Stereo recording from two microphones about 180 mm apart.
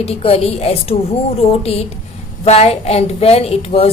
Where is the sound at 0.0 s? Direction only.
35° left (ahead or behind).